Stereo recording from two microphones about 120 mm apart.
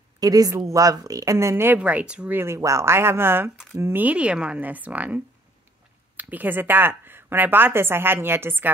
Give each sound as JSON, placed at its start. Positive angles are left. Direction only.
{"t": 0.2, "sound": "a woman's voice", "side_deg": -30}